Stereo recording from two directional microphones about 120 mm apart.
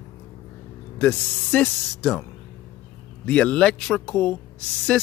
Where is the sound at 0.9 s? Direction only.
10° left (ahead or behind).